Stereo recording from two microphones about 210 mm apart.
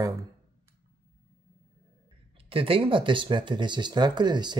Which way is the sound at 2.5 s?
25° right (ahead or behind).